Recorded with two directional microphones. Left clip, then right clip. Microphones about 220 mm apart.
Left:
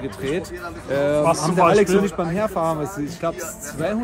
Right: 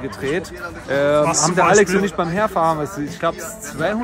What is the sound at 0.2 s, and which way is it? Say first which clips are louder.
A man's voice: right 3 dB; 5° right (ahead or behind).